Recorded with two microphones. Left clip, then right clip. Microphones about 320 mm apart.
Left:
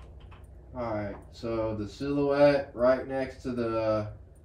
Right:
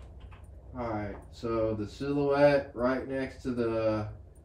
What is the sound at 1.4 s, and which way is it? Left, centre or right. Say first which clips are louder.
Speech: right 1 dB; centre.